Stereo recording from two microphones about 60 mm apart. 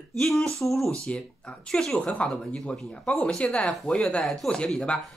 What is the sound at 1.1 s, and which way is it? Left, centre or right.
Speech, centre.